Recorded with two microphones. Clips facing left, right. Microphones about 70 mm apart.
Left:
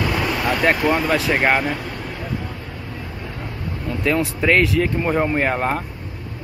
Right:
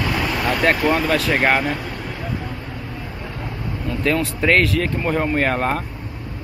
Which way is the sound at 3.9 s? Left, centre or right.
Centre.